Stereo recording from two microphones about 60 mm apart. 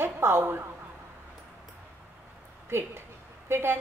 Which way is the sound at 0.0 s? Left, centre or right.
Right.